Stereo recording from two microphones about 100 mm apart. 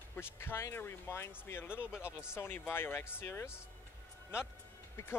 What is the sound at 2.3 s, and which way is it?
Speech, 20° left (ahead or behind).